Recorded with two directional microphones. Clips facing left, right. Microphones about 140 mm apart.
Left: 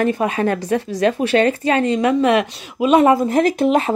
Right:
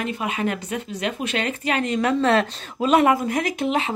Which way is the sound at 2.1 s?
15° left (ahead or behind).